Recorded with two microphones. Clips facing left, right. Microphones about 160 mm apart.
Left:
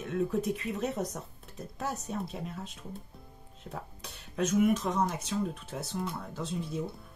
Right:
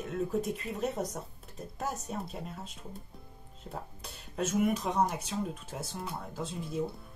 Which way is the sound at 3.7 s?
15° right (ahead or behind).